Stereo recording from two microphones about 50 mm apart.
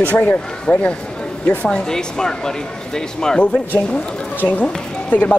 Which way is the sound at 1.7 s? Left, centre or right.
Centre.